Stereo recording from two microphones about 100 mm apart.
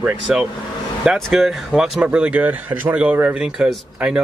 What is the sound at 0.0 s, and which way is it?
Speech, 15° right (ahead or behind).